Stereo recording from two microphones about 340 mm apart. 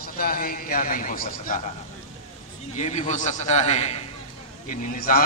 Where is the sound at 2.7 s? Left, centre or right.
Centre.